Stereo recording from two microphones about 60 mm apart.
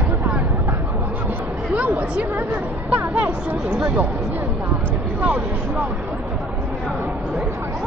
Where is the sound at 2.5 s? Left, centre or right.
Right.